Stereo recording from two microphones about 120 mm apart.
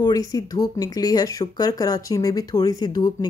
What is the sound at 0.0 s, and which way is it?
Speech, 35° left (ahead or behind).